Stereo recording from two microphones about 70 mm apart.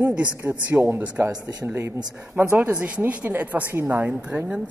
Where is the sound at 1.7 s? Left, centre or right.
Right.